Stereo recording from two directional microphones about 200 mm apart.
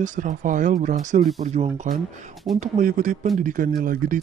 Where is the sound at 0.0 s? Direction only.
40° right (ahead or behind).